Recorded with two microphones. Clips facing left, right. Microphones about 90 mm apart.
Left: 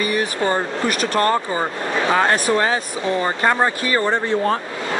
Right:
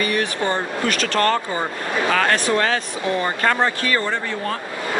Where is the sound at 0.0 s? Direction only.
15° left (ahead or behind).